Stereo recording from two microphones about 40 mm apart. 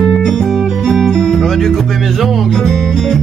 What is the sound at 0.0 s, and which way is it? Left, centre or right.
Music, centre.